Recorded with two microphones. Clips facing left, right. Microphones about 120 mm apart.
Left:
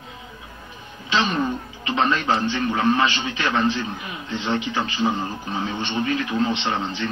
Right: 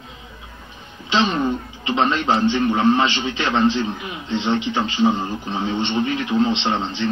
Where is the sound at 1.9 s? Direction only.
20° right (ahead or behind).